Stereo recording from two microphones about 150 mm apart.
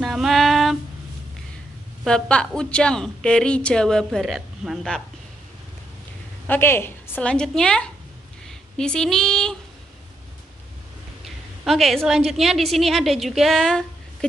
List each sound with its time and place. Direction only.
0.0 s female singing: centre (ahead or behind)
2.0 s a woman's voice: 5° left (ahead or behind)
6.4 s a woman's voice: 15° left (ahead or behind)
11.6 s a woman's voice: centre (ahead or behind)